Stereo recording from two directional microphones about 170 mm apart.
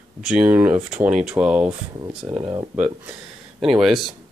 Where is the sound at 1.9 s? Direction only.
35° right (ahead or behind).